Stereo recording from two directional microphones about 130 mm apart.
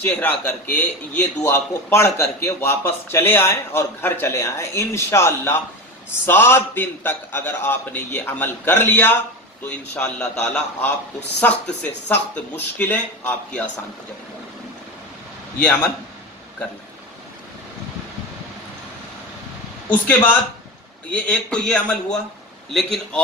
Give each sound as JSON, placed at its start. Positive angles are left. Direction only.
{"t": 0.0, "sound": "a man's voice", "side_deg": 10}
{"t": 19.9, "sound": "a man's voice", "side_deg": 10}